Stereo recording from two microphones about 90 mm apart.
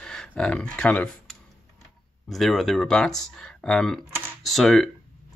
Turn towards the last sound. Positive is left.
turn(degrees=5)  # may be behind; listen again after turning